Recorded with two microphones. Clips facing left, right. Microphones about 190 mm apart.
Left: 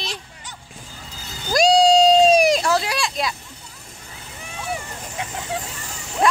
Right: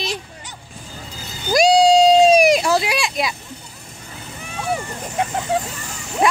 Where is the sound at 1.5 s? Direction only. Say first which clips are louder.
Right 2 dB; 5° right (ahead or behind).